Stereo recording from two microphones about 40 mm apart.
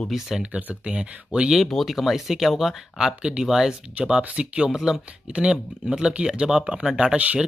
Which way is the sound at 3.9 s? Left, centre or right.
Right.